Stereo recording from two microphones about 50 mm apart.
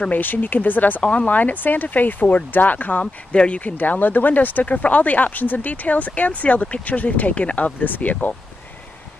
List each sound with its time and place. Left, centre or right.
0.1 s speech: left
1.0 s speech: left